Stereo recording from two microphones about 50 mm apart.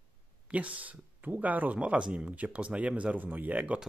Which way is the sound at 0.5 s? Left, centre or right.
Right.